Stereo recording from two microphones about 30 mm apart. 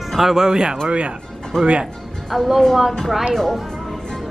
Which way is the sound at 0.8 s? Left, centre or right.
Right.